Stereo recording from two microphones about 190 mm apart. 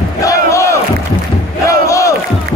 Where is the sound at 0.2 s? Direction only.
15° left (ahead or behind).